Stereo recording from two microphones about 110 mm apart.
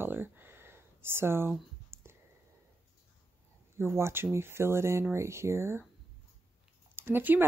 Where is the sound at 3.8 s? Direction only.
25° right (ahead or behind).